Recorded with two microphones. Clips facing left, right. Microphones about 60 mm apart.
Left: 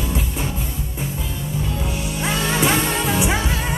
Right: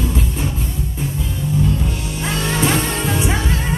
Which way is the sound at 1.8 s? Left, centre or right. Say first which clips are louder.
Right 1 dB; centre.